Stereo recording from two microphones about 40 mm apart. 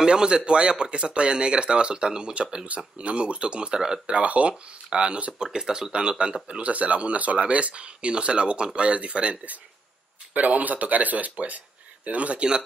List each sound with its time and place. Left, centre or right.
0.0 s speech: centre
4.1 s speech: right
5.4 s speech: centre
10.3 s speech: right